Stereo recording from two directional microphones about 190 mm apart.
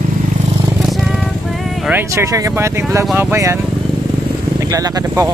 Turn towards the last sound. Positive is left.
turn(degrees=-20)  # may be behind; listen again after turning